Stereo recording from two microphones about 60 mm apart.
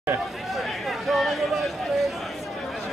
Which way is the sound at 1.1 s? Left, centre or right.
Centre.